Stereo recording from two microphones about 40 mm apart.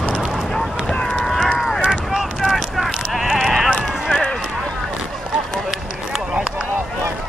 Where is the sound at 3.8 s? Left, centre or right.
Centre.